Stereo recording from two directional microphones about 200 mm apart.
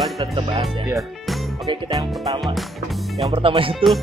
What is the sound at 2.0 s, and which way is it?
Speech, 20° right (ahead or behind).